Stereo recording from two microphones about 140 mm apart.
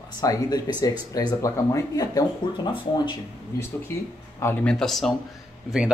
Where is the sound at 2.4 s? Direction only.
35° left (ahead or behind).